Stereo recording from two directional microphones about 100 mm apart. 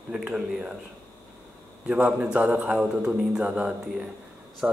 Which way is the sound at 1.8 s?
10° right (ahead or behind).